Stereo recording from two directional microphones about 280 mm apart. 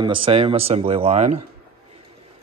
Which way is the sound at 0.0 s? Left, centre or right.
Centre.